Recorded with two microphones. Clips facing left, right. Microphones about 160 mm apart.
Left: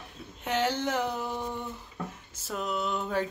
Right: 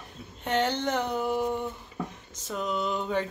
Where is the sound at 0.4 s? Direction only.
5° left (ahead or behind).